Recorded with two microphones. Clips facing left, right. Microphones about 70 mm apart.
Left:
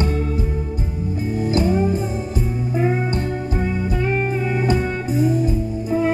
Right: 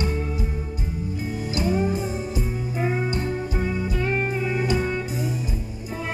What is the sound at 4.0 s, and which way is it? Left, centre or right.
Music, centre.